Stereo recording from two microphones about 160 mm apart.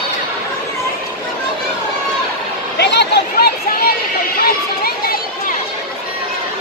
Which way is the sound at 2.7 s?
90° left.